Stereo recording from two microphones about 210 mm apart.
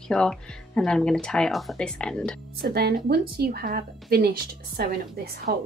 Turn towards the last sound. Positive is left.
turn(degrees=-45)  # may be behind; listen again after turning